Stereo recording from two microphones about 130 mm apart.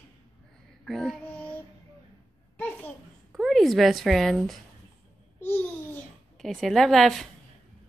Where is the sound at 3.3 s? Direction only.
Centre (ahead or behind).